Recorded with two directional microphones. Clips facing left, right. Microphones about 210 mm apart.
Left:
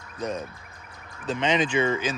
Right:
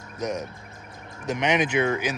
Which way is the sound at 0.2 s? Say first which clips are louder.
Right 1 dB; 75° right (ahead or behind).